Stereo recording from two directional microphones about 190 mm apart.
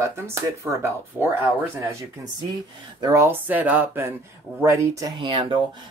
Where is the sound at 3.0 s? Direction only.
15° right (ahead or behind).